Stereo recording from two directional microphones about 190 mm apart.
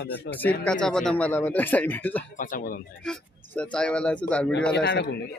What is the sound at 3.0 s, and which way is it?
Speech, 5° left (ahead or behind).